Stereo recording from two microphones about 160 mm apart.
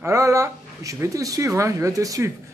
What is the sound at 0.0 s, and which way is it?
A man's voice, 20° right (ahead or behind).